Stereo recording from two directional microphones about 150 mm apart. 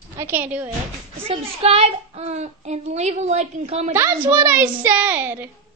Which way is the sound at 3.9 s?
15° right (ahead or behind).